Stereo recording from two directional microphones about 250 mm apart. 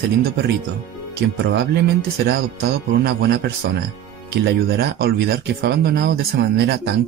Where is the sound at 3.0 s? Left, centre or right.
Right.